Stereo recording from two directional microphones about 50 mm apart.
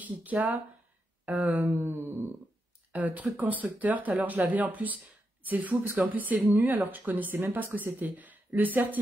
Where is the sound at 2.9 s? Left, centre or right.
Right.